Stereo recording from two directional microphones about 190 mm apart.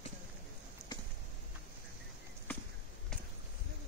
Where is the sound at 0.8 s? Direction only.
15° left (ahead or behind).